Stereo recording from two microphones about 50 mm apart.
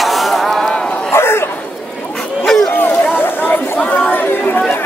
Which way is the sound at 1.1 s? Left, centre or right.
Left.